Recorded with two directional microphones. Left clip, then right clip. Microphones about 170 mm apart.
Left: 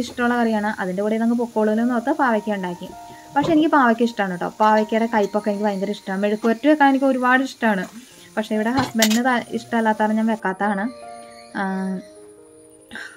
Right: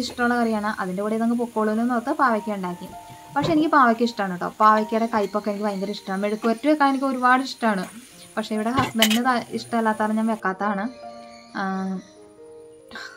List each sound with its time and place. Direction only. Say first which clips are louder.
0.0 s a woman's voice: left 2 dB; 15° left (ahead or behind)
11.5 s music: left 2 dB; 20° left (ahead or behind)